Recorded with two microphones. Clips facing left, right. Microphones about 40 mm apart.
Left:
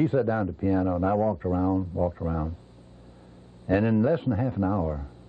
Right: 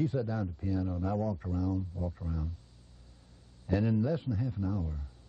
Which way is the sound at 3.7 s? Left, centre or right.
Left.